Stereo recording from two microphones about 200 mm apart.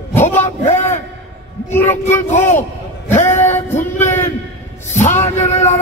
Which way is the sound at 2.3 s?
35° left (ahead or behind).